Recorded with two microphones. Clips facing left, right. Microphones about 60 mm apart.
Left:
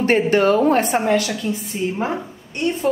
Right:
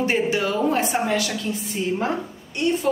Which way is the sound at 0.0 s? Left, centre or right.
Left.